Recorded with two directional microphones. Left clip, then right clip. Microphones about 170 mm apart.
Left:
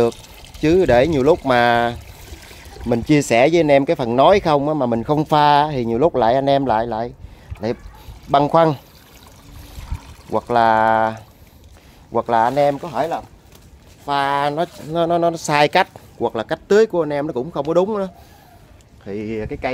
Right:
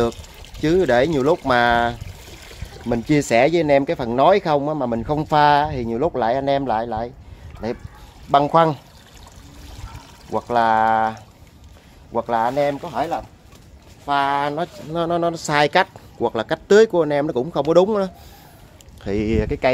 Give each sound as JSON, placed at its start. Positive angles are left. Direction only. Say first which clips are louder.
{"t": 0.0, "sound": "pour", "louder": "left 4 dB", "side_deg": 15}
{"t": 0.6, "sound": "speech", "louder": "left 3 dB", "side_deg": 30}
{"t": 3.1, "sound": "speech", "louder": "left 2 dB", "side_deg": 30}
{"t": 10.3, "sound": "speech", "louder": "left 2 dB", "side_deg": 55}
{"t": 14.0, "sound": "speech", "louder": "left 1 dB", "side_deg": 75}
{"t": 14.7, "sound": "speech", "louder": "left 4 dB", "side_deg": 30}
{"t": 16.2, "sound": "speech", "louder": "even", "side_deg": 10}
{"t": 16.4, "sound": "speech", "louder": "right 1 dB", "side_deg": -5}
{"t": 19.0, "sound": "speech", "louder": "right 4 dB", "side_deg": -80}